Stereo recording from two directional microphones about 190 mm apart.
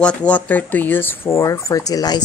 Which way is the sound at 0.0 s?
5° left (ahead or behind).